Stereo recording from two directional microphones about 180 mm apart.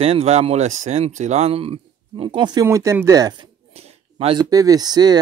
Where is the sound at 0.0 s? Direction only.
35° right (ahead or behind).